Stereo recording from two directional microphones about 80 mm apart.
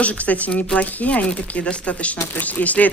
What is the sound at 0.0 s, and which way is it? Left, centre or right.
Speech, centre.